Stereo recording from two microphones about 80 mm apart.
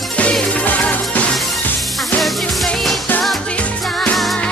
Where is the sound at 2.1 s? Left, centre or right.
Centre.